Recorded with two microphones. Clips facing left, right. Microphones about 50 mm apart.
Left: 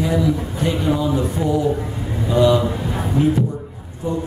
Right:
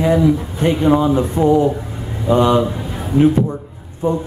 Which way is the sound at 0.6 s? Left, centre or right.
Right.